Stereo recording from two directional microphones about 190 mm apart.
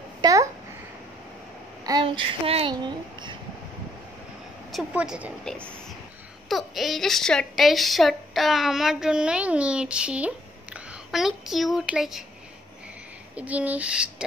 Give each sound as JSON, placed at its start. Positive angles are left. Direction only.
{"t": 0.2, "sound": "a sound", "side_deg": -15}
{"t": 1.9, "sound": "speech", "side_deg": -25}
{"t": 4.7, "sound": "speech", "side_deg": -5}
{"t": 13.4, "sound": "speech", "side_deg": -5}